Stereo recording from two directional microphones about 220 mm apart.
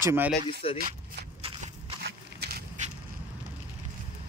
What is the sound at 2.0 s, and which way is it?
Biting, 45° right (ahead or behind).